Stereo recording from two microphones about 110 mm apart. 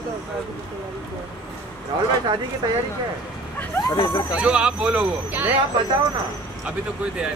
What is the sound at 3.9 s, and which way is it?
Speech, 40° left (ahead or behind).